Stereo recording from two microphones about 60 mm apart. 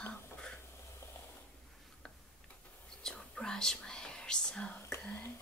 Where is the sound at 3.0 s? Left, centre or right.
Centre.